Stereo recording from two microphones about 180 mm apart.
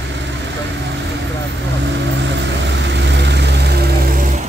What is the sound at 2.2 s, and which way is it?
Vehicle, 75° right (ahead or behind).